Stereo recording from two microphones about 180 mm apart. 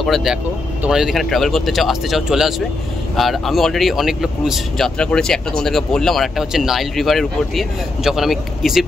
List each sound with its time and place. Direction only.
0.0 s speech: centre (ahead or behind)